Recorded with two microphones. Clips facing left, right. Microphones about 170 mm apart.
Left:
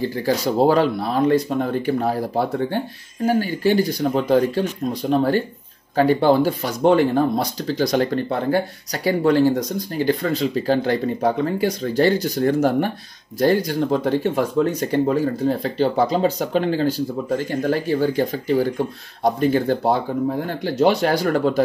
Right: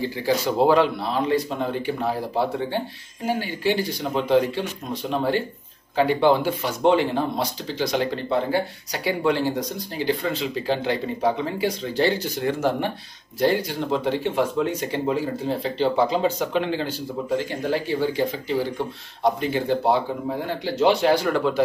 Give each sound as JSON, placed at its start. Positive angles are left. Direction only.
{"t": 0.2, "sound": "speech", "side_deg": 40}
{"t": 5.9, "sound": "speech", "side_deg": 40}